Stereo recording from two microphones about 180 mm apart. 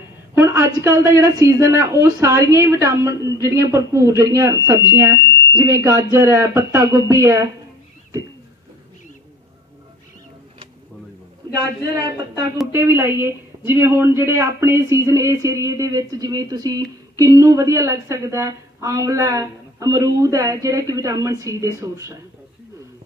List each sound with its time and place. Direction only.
0.3 s a woman's voice: 15° right (ahead or behind)
12.7 s a woman's voice: 15° right (ahead or behind)